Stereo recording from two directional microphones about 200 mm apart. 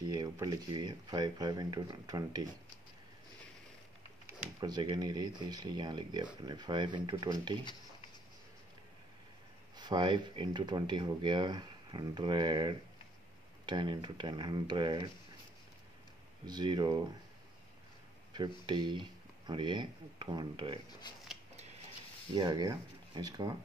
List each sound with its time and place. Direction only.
0.0 s speech: 20° right (ahead or behind)
4.3 s speech: 15° right (ahead or behind)
9.8 s speech: 20° right (ahead or behind)
16.4 s speech: 20° right (ahead or behind)
18.3 s speech: 25° right (ahead or behind)
21.0 s a sound: 20° left (ahead or behind)
22.3 s speech: 20° right (ahead or behind)